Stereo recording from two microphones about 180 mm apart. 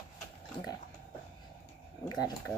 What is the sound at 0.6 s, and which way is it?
Speech, 30° left (ahead or behind).